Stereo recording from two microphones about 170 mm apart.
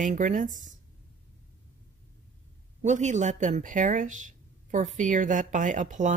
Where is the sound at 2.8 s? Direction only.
45° right (ahead or behind).